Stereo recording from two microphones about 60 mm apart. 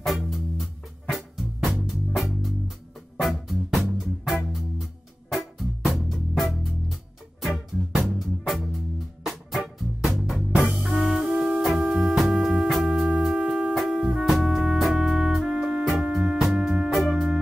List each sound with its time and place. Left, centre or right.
0.0 s music: centre
9.8 s music: centre
10.5 s music: right
10.8 s music: centre